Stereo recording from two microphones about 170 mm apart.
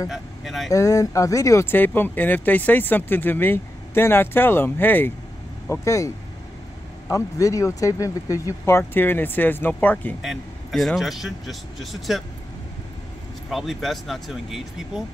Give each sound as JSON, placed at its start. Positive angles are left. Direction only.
{"t": 0.1, "sound": "speech", "side_deg": 0}
{"t": 0.7, "sound": "speech", "side_deg": 20}
{"t": 10.2, "sound": "a man's voice", "side_deg": 0}
{"t": 13.5, "sound": "a man's voice", "side_deg": 0}